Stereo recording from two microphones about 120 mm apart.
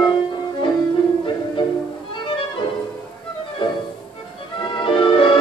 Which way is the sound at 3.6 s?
45° left (ahead or behind).